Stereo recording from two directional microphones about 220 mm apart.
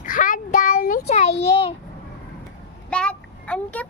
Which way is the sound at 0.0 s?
40° left (ahead or behind).